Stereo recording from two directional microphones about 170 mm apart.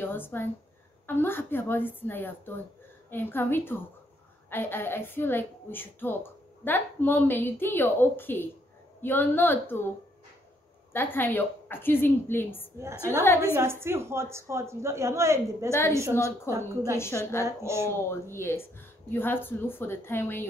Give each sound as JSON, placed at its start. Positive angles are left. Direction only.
{"t": 0.0, "sound": "a woman's voice", "side_deg": 10}
{"t": 10.9, "sound": "a woman's voice", "side_deg": 10}
{"t": 13.4, "sound": "a woman's voice", "side_deg": -15}
{"t": 16.9, "sound": "a woman's voice", "side_deg": 15}
{"t": 17.5, "sound": "a woman's voice", "side_deg": -15}
{"t": 17.9, "sound": "a woman's voice", "side_deg": 15}